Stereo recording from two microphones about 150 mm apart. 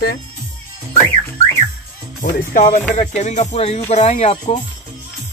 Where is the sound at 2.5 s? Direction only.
55° left (ahead or behind).